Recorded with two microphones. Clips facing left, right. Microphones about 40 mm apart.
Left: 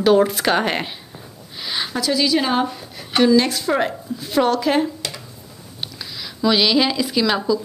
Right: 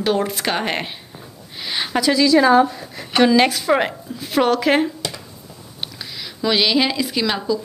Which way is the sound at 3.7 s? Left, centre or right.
Right.